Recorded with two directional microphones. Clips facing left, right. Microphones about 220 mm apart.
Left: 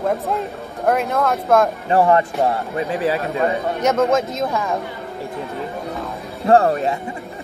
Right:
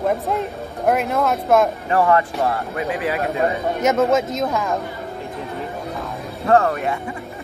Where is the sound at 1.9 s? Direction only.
30° left (ahead or behind).